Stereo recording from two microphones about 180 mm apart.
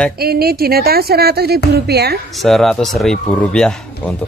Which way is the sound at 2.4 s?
Centre (ahead or behind).